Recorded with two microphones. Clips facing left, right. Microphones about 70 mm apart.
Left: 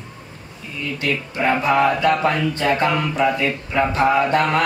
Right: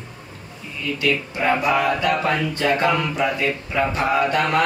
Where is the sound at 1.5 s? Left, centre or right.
Left.